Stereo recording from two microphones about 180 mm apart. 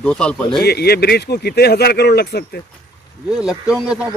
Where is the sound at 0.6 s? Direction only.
60° left (ahead or behind).